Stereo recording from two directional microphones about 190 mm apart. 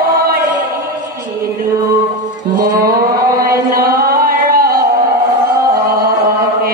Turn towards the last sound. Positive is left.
turn(degrees=-50)  # may be behind; listen again after turning